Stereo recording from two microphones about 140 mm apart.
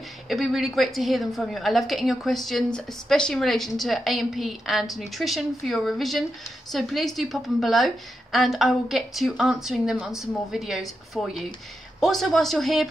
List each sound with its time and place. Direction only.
0.3 s a woman's voice: centre (ahead or behind)